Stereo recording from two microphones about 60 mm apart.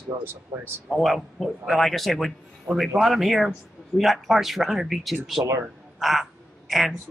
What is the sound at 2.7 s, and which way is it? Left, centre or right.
Speech, right.